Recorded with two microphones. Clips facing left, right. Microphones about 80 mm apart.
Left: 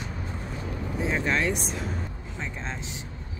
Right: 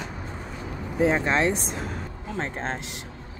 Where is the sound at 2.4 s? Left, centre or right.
Right.